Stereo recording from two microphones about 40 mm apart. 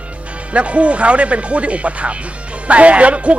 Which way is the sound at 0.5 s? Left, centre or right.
Right.